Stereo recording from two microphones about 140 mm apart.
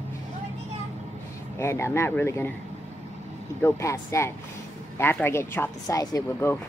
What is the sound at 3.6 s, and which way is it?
Speech, 20° left (ahead or behind).